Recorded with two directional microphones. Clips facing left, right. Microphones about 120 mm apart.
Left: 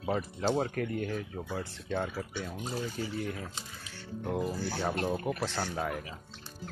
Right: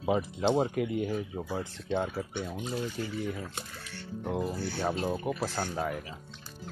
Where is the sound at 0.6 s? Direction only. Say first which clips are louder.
Right 3 dB; 10° right (ahead or behind).